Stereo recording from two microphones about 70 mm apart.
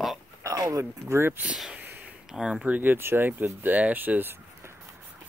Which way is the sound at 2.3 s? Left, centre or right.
Centre.